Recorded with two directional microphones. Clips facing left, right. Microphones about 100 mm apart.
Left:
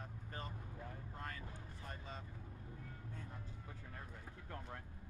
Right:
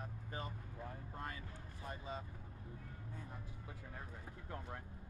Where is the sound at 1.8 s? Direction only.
15° right (ahead or behind).